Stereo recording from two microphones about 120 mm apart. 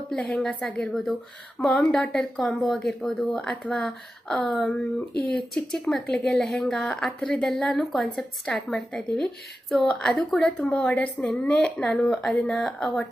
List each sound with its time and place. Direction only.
0.1 s a woman's voice: 5° left (ahead or behind)